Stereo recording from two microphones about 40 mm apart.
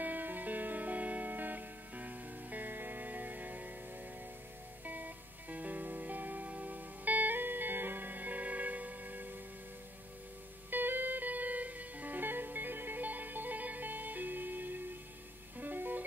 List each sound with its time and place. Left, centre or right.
0.0 s music: right
4.8 s music: right
10.7 s music: right